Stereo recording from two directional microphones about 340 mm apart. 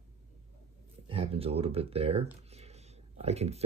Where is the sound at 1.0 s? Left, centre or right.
Centre.